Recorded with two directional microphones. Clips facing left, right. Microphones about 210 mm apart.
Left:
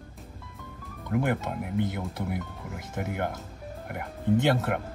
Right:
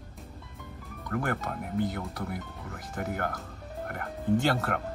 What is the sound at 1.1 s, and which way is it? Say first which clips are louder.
Speech: left 4 dB; centre (ahead or behind).